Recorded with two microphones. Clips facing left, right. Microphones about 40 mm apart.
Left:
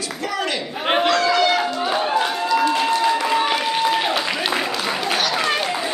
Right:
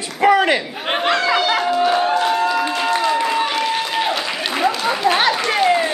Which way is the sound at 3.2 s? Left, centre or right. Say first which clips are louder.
Right 1 dB; centre.